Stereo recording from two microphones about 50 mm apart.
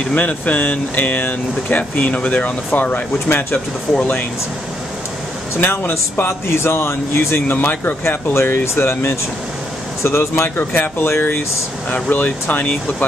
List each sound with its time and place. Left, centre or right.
0.0 s speech: left
5.8 s speech: left
6.5 s speech: left
7.4 s speech: left
8.4 s speech: left
10.5 s speech: left
11.9 s speech: left